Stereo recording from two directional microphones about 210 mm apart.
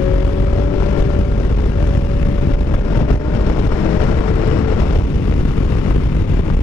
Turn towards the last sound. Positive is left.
turn(degrees=15)  # may be behind; listen again after turning